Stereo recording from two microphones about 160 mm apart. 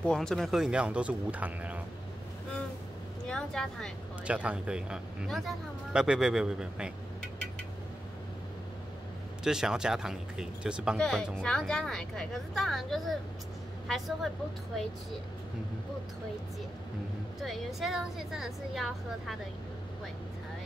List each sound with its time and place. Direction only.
0.0 s speech: 5° left (ahead or behind)
3.3 s speech: 5° left (ahead or behind)
4.3 s speech: 10° right (ahead or behind)
9.4 s speech: 5° right (ahead or behind)
17.4 s speech: centre (ahead or behind)